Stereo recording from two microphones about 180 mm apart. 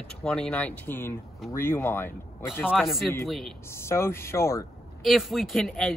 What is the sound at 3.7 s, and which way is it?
Speech, 15° left (ahead or behind).